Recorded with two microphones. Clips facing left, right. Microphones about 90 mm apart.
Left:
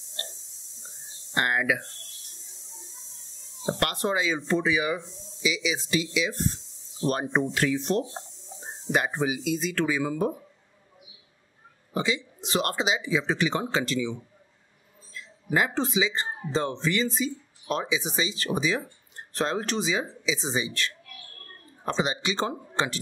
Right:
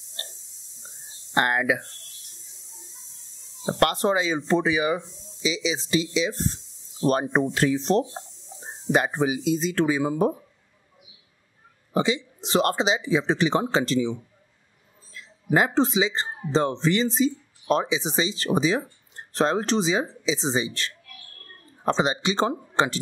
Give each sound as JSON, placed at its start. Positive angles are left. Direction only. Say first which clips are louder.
{"t": 1.3, "sound": "speech", "louder": "right 3 dB", "side_deg": -35}
{"t": 3.6, "sound": "speech", "louder": "right 5 dB", "side_deg": -30}
{"t": 11.9, "sound": "speech", "louder": "right 4 dB", "side_deg": -30}
{"t": 15.5, "sound": "speech", "louder": "right 4 dB", "side_deg": -35}